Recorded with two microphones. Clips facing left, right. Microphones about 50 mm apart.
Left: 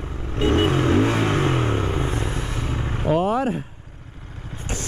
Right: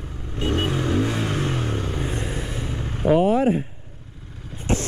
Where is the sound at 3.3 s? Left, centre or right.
Right.